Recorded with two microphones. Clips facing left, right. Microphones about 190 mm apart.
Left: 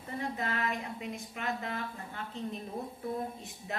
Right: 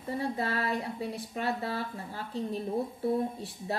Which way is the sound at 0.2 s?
35° right (ahead or behind).